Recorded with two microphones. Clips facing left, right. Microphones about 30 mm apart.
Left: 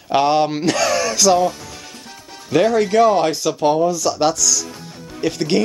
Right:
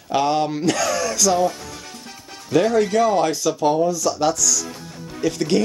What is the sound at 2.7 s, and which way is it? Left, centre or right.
Speech, left.